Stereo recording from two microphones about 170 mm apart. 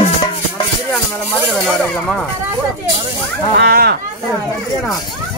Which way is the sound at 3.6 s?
70° right (ahead or behind).